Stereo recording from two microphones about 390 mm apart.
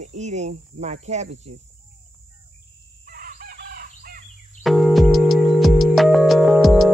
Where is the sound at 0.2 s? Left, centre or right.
Centre.